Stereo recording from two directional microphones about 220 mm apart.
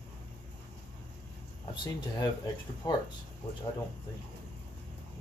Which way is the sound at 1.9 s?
20° left (ahead or behind).